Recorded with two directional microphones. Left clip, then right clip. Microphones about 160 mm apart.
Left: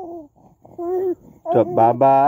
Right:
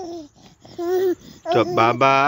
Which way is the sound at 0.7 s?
10° left (ahead or behind).